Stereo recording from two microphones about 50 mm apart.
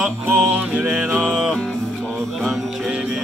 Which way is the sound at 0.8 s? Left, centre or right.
Right.